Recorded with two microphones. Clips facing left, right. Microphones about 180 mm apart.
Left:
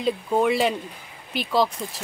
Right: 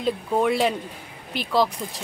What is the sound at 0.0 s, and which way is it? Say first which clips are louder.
Speech: left 1 dB; centre (ahead or behind).